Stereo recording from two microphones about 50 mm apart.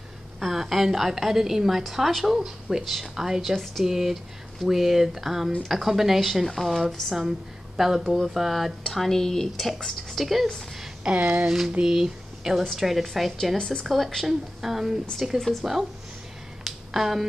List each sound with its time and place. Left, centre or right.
0.4 s a woman's voice: centre
7.2 s a woman's voice: centre
11.1 s speech: right
11.4 s a woman's voice: centre
13.6 s speech: centre
13.8 s a woman's voice: centre
16.6 s a sound: centre